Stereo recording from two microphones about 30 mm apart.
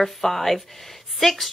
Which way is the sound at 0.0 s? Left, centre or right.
Centre.